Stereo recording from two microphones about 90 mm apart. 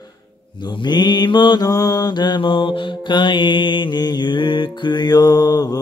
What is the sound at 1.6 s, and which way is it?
Mantra, 45° left (ahead or behind).